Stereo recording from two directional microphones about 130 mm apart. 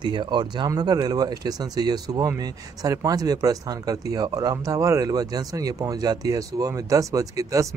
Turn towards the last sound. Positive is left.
turn(degrees=-25)  # may be behind; listen again after turning